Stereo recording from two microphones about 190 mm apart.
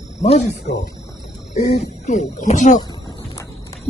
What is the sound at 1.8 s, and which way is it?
Speech, 35° left (ahead or behind).